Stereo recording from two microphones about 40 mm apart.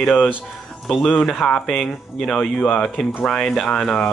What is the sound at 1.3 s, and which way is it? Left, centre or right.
Speech, left.